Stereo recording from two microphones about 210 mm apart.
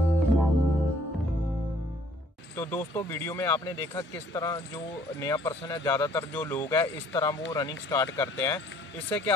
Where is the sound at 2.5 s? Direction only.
10° left (ahead or behind).